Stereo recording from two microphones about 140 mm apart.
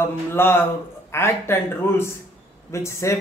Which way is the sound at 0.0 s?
15° left (ahead or behind).